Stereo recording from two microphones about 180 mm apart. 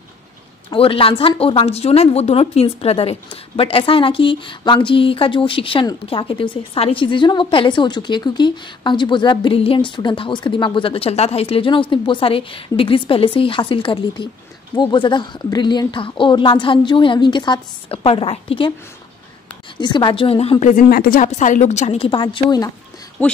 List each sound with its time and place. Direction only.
0.7 s speech: 30° left (ahead or behind)
19.8 s speech: 25° left (ahead or behind)
20.7 s a woman's voice: 55° left (ahead or behind); by 22.7 s 25° left (ahead or behind)
23.2 s speech: 10° left (ahead or behind)